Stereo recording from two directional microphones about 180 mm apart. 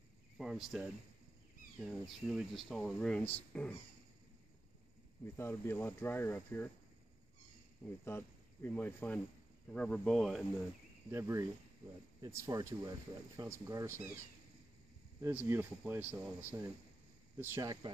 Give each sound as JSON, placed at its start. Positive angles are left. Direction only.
{"t": 0.4, "sound": "speech", "side_deg": 0}
{"t": 5.2, "sound": "speech", "side_deg": 15}
{"t": 8.0, "sound": "speech", "side_deg": 10}
{"t": 11.1, "sound": "speech", "side_deg": -15}
{"t": 15.2, "sound": "speech", "side_deg": -15}